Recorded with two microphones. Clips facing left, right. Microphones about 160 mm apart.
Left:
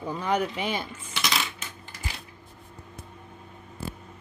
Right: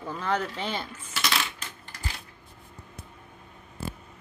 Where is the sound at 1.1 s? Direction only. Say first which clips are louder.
Even; centre (ahead or behind).